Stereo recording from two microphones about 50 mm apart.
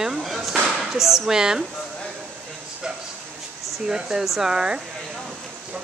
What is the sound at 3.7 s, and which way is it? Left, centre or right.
Speech, centre.